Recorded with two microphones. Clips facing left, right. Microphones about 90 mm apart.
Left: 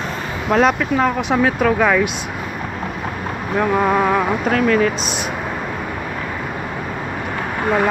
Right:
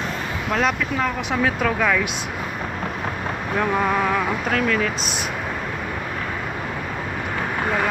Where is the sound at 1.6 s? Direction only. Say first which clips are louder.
Left 5 dB; 25° left (ahead or behind).